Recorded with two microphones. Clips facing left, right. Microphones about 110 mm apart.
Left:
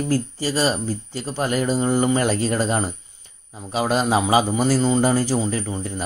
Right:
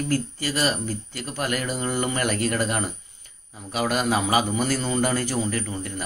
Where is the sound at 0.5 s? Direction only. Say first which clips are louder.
Left 4 dB; 15° left (ahead or behind).